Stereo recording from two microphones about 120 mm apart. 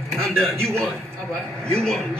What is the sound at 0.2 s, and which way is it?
A man's voice, centre (ahead or behind).